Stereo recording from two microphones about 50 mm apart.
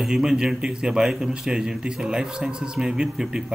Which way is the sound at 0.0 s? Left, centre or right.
Centre.